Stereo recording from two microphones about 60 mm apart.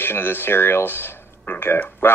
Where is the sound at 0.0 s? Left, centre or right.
Left.